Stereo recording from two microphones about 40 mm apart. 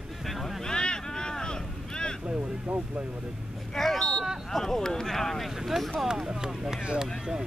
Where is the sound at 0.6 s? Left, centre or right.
Centre.